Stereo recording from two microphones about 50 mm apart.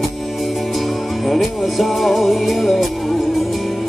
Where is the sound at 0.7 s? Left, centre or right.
Centre.